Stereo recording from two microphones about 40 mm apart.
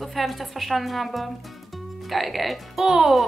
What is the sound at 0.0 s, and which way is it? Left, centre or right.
A woman's voice, centre.